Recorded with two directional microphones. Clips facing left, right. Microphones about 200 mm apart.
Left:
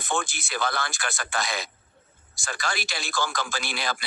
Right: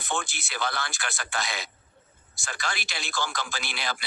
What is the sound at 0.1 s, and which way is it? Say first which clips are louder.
Speech: left 3 dB; 50° left (ahead or behind).